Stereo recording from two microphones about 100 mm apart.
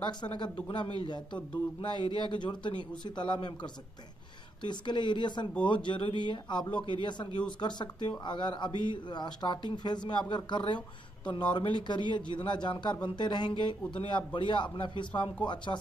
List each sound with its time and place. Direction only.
0.0 s speech: 50° left (ahead or behind)